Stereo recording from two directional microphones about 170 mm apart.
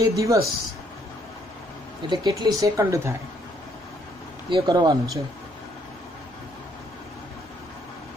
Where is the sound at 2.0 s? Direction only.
25° right (ahead or behind).